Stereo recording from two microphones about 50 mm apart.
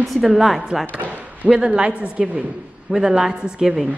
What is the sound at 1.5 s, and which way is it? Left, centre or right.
Speech, centre.